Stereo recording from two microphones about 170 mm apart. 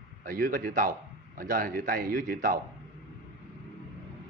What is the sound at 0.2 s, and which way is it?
Speech, 55° right (ahead or behind).